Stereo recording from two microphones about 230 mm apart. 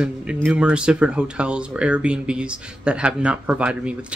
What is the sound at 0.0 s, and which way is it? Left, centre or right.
Speech, centre.